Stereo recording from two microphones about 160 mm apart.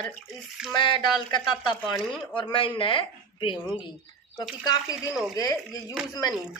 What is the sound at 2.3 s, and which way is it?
A woman's voice, 30° left (ahead or behind).